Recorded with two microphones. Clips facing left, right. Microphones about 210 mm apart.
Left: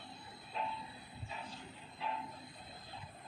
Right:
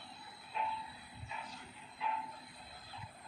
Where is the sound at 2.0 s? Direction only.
30° left (ahead or behind).